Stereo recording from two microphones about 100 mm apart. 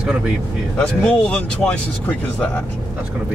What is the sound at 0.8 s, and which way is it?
Speech, 10° left (ahead or behind).